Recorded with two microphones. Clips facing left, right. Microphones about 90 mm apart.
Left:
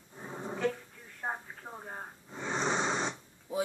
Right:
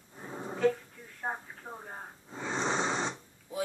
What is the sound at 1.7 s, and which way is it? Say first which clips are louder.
Speech: right 1 dB; 20° left (ahead or behind).